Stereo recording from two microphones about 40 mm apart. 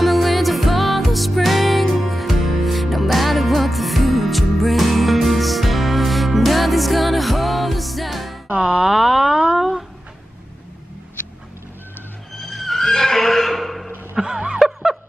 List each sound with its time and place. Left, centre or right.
0.0 s music: centre
8.5 s music: right
8.8 s a sound: centre
12.4 s neigh: centre
14.2 s snicker: right
14.6 s snicker: centre